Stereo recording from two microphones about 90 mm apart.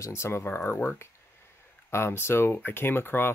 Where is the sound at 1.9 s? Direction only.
30° left (ahead or behind).